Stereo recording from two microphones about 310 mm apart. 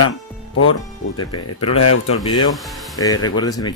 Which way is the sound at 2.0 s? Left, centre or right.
Centre.